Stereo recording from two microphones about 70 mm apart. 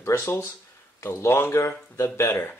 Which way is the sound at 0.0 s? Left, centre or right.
Left.